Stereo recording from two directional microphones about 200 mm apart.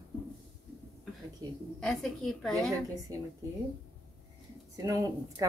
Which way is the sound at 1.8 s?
Centre (ahead or behind).